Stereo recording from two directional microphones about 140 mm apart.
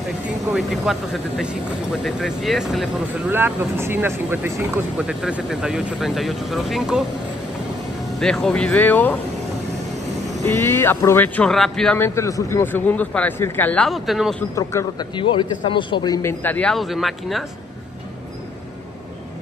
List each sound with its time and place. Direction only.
0.5 s speech: centre (ahead or behind)
3.3 s speech: 15° right (ahead or behind)
8.2 s a man's voice: 5° left (ahead or behind)
10.4 s a man's voice: 15° left (ahead or behind)
12.0 s a man's voice: 20° left (ahead or behind)
13.8 s speech: centre (ahead or behind)
14.5 s a man's voice: 20° left (ahead or behind)
15.1 s a man's voice: 35° left (ahead or behind)
16.2 s speech: 15° left (ahead or behind); by 17.5 s centre (ahead or behind)